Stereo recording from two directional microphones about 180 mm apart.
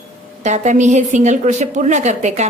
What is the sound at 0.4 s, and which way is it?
A woman's voice, 40° right (ahead or behind).